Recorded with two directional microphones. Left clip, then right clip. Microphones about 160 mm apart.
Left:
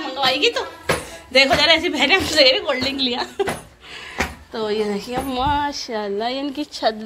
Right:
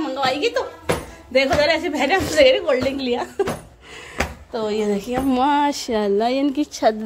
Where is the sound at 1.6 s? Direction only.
20° right (ahead or behind).